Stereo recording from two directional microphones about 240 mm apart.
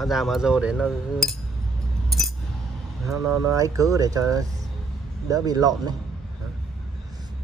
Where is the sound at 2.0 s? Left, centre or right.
Centre.